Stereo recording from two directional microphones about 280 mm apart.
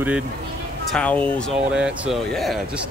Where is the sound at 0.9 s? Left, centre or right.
Centre.